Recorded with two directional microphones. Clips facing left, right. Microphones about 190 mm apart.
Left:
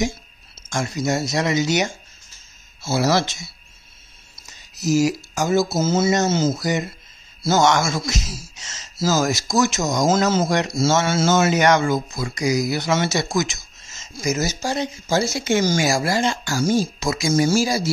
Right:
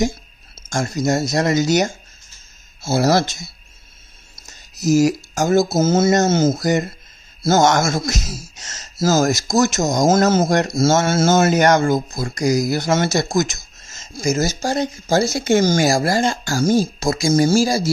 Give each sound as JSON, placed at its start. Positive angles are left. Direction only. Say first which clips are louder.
{"t": 0.6, "sound": "speech", "louder": "right 3 dB", "side_deg": -40}